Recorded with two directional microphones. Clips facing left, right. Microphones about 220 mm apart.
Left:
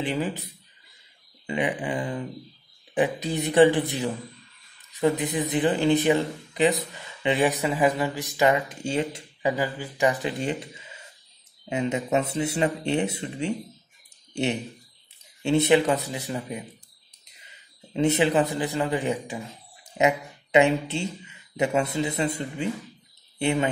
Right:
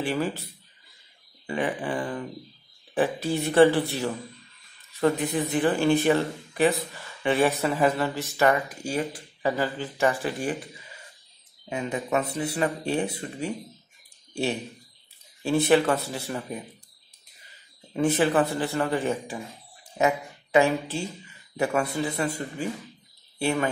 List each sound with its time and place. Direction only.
0.0 s speech: 15° left (ahead or behind)
1.5 s speech: 20° left (ahead or behind)
17.9 s a man's voice: 20° left (ahead or behind)